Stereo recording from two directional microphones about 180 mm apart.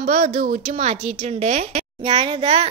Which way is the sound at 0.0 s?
40° right (ahead or behind).